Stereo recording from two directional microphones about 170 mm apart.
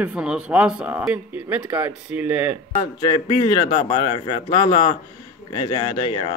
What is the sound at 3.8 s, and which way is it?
Speech, 30° left (ahead or behind).